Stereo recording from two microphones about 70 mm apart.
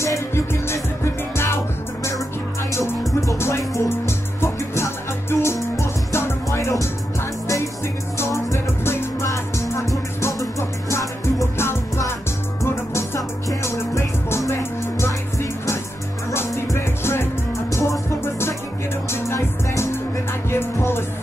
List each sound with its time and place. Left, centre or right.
0.0 s music: left
3.2 s music: left
8.2 s music: left
13.6 s music: left
17.6 s music: left